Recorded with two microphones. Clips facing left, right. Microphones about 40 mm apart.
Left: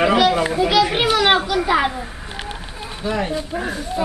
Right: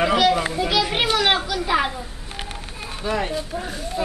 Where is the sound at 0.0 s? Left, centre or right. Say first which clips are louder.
Left 3 dB; centre.